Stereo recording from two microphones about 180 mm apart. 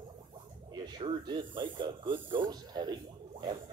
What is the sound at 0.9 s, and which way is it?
Speech, 25° right (ahead or behind).